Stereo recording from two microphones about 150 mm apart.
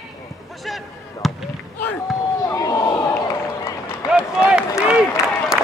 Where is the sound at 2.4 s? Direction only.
25° left (ahead or behind).